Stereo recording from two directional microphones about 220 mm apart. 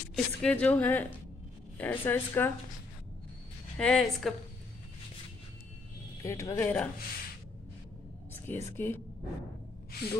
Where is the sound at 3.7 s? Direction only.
5° left (ahead or behind).